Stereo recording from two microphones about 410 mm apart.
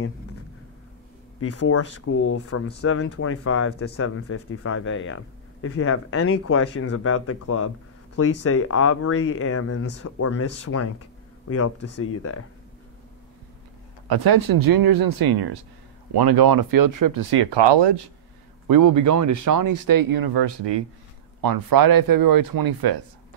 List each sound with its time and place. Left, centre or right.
1.4 s speech: left
14.0 s speech: right
18.7 s speech: right
21.4 s speech: right